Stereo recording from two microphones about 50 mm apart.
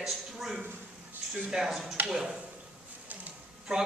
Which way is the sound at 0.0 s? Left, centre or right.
Centre.